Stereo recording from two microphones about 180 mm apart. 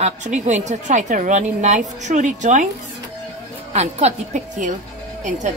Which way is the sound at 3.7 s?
35° right (ahead or behind).